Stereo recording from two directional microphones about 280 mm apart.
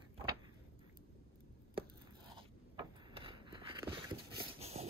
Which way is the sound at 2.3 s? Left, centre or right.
Centre.